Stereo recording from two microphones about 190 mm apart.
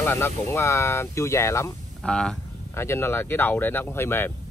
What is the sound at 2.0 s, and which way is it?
Speech, 5° left (ahead or behind).